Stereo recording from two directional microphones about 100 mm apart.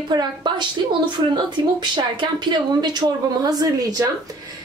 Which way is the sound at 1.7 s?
50° right (ahead or behind).